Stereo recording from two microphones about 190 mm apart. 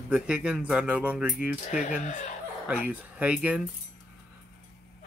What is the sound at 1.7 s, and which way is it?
Speech, 40° left (ahead or behind).